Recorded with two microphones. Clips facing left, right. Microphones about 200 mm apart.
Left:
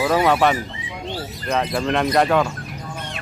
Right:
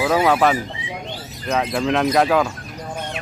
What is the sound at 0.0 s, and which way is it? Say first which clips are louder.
Speech: even; centre (ahead or behind).